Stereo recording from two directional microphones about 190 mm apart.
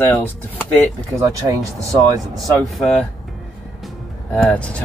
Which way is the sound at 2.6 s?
Centre (ahead or behind).